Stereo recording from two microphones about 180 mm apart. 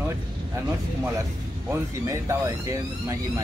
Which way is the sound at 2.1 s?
15° right (ahead or behind).